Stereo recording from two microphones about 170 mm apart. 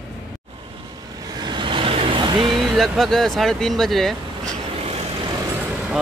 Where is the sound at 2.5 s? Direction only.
Centre (ahead or behind).